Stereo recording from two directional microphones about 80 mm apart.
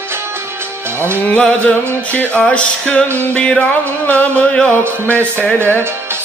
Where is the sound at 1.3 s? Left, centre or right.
Centre.